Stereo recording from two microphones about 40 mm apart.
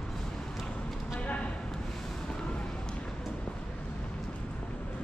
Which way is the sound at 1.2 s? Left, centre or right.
Left.